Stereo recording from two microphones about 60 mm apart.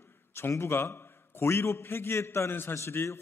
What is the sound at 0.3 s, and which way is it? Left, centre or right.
A man's voice, left.